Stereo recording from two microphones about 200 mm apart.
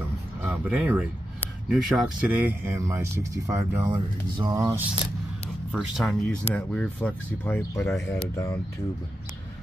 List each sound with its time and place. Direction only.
0.4 s speech: 5° right (ahead or behind)
5.7 s speech: 5° right (ahead or behind)